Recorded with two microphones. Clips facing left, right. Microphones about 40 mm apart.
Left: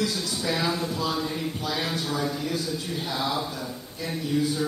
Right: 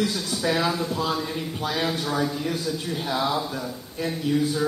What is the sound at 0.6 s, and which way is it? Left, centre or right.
Speech, centre.